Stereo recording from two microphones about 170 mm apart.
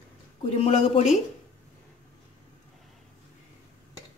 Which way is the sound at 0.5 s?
35° left (ahead or behind).